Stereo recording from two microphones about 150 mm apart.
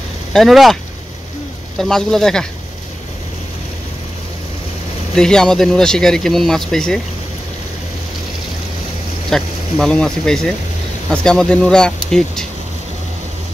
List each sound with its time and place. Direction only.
0.3 s speech: centre (ahead or behind)
1.8 s speech: 5° left (ahead or behind)
5.1 s speech: 5° left (ahead or behind)
9.3 s speech: 5° left (ahead or behind)